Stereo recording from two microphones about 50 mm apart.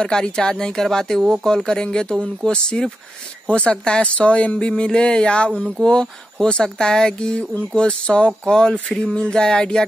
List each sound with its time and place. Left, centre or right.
0.0 s speech: centre